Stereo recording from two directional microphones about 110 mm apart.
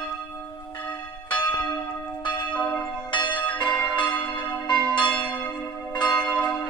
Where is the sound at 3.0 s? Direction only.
45° left (ahead or behind).